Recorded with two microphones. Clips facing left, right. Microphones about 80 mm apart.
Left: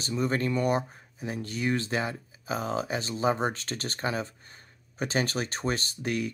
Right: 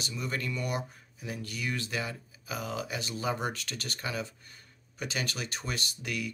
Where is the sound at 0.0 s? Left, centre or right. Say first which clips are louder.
Left 7 dB; left.